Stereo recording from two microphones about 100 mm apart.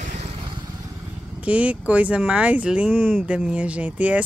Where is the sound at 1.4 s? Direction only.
15° right (ahead or behind).